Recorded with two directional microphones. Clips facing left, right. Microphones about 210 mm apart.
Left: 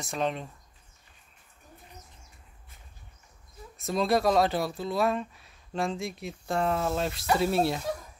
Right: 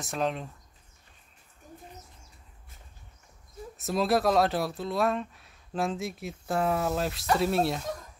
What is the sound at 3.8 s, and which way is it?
Speech, centre (ahead or behind).